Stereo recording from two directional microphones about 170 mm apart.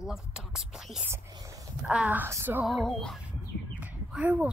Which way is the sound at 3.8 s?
10° right (ahead or behind).